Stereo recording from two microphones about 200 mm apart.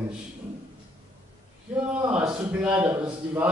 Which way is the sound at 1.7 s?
5° right (ahead or behind).